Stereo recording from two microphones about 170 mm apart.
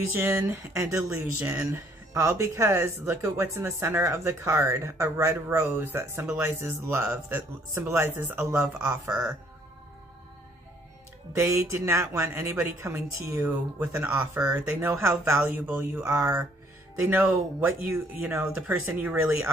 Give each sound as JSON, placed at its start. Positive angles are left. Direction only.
{"t": 0.1, "sound": "speech", "side_deg": -10}
{"t": 11.3, "sound": "speech", "side_deg": -15}